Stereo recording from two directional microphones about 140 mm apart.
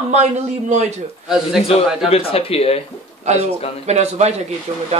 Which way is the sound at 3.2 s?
55° right (ahead or behind).